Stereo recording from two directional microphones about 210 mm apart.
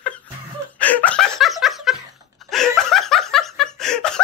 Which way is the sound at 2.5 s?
Centre (ahead or behind).